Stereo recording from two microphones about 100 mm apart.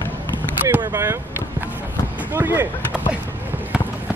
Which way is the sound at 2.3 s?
20° right (ahead or behind).